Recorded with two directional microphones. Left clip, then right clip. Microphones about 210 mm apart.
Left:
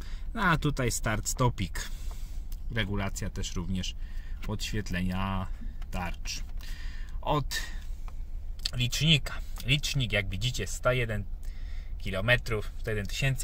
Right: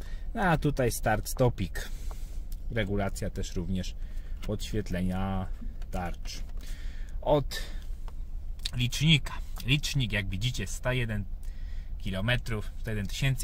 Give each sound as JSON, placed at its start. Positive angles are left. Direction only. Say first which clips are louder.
{"t": 0.3, "sound": "speech", "louder": "even", "side_deg": 10}